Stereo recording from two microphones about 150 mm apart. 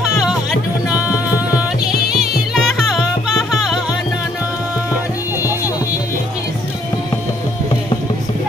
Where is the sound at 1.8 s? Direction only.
5° right (ahead or behind).